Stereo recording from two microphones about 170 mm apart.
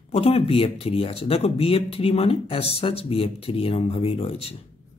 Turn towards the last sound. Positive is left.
turn(degrees=35)  # may be behind; listen again after turning